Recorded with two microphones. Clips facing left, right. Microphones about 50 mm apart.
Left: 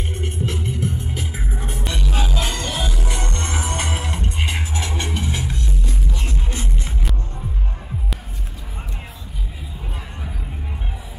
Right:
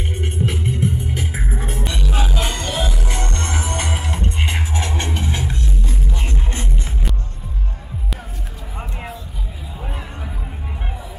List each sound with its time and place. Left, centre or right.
0.1 s music: centre
1.1 s music: centre
1.4 s music: centre
1.9 s music: centre
2.1 s music: centre
3.2 s music: centre
4.1 s music: centre
4.7 s music: right
6.1 s music: centre
6.6 s music: centre
9.8 s music: right